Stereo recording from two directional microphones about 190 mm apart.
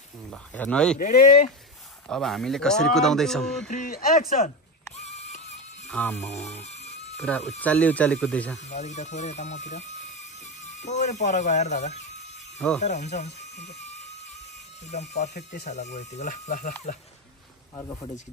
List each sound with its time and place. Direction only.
0.3 s speech: 5° left (ahead or behind)
0.9 s speech: 45° left (ahead or behind)
2.0 s speech: centre (ahead or behind)
3.7 s speech: 45° left (ahead or behind)
4.9 s music: 35° left (ahead or behind)
5.9 s speech: 10° left (ahead or behind)
6.2 s speech: 35° left (ahead or behind)
6.6 s music: 35° left (ahead or behind)
7.2 s speech: 5° left (ahead or behind)
8.6 s speech: 35° left (ahead or behind)
12.5 s speech: 5° left (ahead or behind)
12.8 s speech: 35° left (ahead or behind)
17.7 s speech: 30° left (ahead or behind)